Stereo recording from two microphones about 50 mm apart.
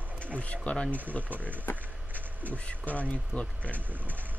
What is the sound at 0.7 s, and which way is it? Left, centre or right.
Speech, left.